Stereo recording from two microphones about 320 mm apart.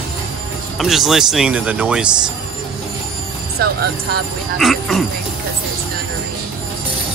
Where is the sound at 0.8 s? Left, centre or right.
Centre.